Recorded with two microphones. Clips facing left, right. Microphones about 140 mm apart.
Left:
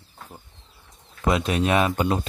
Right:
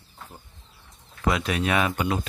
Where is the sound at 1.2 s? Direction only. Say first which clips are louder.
Left 3 dB; 25° left (ahead or behind).